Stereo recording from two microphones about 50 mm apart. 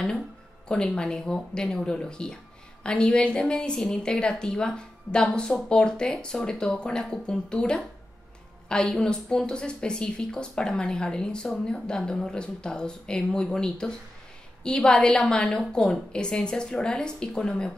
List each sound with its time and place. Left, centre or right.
0.8 s a woman's voice: centre